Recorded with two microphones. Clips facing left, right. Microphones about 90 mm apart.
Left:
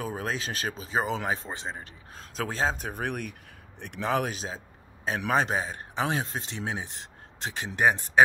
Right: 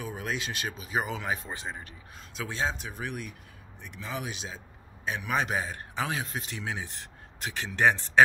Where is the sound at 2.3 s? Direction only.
40° left (ahead or behind); by 4.3 s 60° left (ahead or behind).